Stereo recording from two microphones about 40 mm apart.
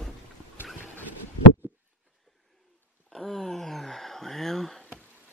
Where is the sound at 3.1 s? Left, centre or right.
Centre.